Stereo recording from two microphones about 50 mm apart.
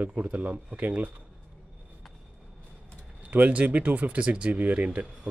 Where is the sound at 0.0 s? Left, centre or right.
Right.